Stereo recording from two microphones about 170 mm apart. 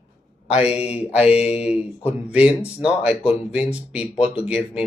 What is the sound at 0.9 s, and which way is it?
Speech, 5° right (ahead or behind).